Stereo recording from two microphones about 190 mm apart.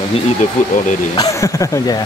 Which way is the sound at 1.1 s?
15° left (ahead or behind).